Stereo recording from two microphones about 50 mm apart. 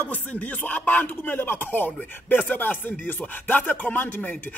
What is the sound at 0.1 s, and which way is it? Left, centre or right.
Speech, left.